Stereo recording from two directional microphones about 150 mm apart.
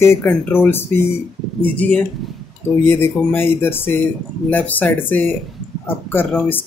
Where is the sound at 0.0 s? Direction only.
15° left (ahead or behind).